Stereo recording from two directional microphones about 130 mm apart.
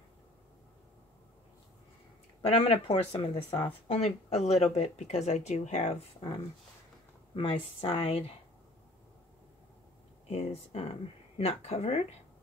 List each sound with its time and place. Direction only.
2.4 s speech: 50° left (ahead or behind)
7.3 s speech: 40° left (ahead or behind)
10.3 s speech: 55° left (ahead or behind)